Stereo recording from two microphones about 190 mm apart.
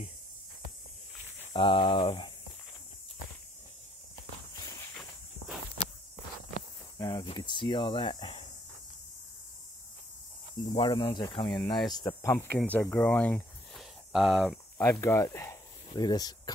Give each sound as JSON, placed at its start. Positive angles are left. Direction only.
{"t": 1.5, "sound": "speech", "side_deg": 25}
{"t": 7.0, "sound": "speech", "side_deg": 25}
{"t": 10.6, "sound": "speech", "side_deg": 25}
{"t": 13.7, "sound": "a sound", "side_deg": 0}
{"t": 14.8, "sound": "speech", "side_deg": 10}